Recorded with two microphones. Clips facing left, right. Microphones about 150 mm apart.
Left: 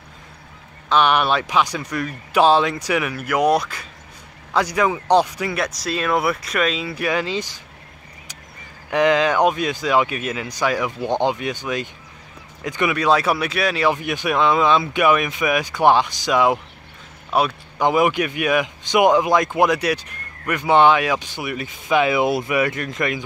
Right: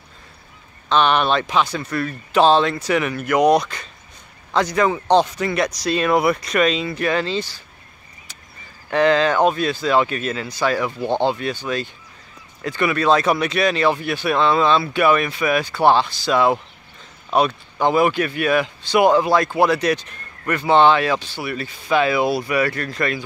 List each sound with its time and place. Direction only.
0.8 s speech: 10° left (ahead or behind)
8.9 s speech: 15° left (ahead or behind)